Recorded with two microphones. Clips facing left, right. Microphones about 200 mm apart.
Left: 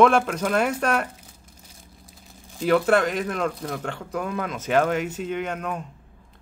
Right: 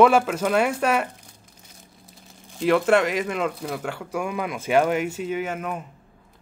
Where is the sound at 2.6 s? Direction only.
Centre (ahead or behind).